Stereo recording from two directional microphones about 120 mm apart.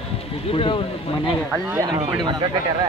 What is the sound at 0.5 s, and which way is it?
Speech, 50° left (ahead or behind).